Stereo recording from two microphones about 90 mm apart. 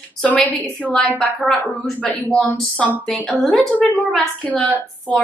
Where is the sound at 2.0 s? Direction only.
15° left (ahead or behind).